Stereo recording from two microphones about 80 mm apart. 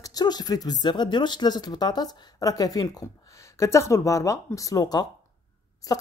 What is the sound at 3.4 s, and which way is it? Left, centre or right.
Speech, left.